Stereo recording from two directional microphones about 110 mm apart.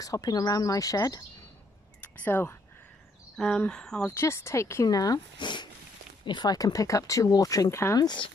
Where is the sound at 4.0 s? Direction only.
25° left (ahead or behind).